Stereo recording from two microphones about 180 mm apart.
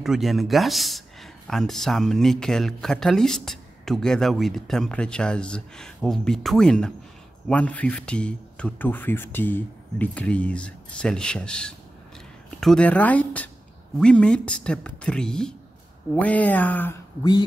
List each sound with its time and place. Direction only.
0.0 s a man's voice: centre (ahead or behind)
17.2 s speech: 20° left (ahead or behind)